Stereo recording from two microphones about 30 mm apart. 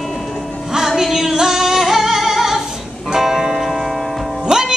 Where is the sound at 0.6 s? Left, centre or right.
Centre.